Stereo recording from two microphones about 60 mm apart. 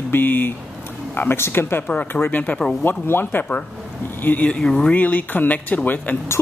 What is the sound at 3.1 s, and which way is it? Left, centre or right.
Speech, left.